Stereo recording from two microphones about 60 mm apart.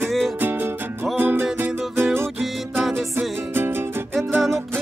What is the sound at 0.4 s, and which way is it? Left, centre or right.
Music, right.